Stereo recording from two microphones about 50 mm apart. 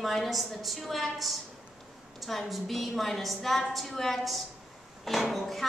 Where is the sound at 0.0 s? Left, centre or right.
Centre.